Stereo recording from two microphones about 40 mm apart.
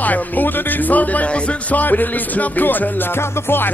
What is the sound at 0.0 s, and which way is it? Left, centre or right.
Music, left.